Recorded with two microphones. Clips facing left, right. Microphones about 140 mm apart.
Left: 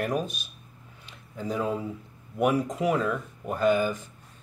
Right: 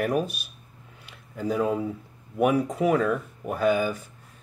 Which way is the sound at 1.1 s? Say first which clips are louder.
Right 4 dB; 5° right (ahead or behind).